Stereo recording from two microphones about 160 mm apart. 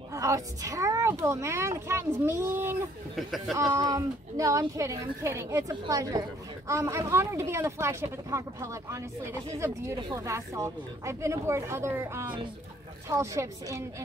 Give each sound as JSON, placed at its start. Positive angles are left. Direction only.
{"t": 0.1, "sound": "a child's voice", "side_deg": -20}
{"t": 3.2, "sound": "speech", "side_deg": 0}
{"t": 3.5, "sound": "a woman's voice", "side_deg": -20}